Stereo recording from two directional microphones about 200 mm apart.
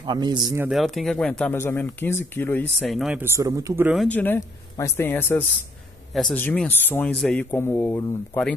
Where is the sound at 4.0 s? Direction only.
10° left (ahead or behind).